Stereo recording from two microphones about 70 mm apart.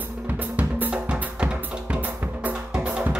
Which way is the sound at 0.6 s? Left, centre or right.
Right.